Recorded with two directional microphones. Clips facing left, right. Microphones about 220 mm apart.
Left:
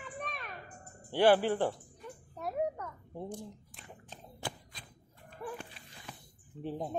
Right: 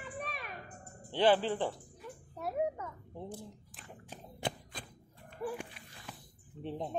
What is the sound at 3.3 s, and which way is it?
Speech, 5° right (ahead or behind).